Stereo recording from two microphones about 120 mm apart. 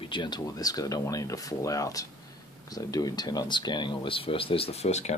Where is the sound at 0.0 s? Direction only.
40° left (ahead or behind).